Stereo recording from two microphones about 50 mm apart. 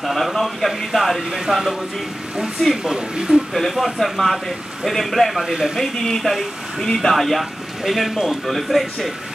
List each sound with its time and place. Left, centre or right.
0.0 s speech: centre
1.3 s speech: centre
2.8 s speech: centre
3.5 s speech: centre
5.8 s speech: centre